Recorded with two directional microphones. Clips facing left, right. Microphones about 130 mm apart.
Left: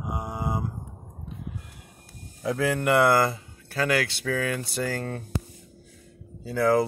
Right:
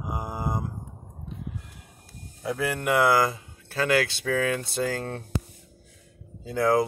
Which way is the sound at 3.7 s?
25° right (ahead or behind).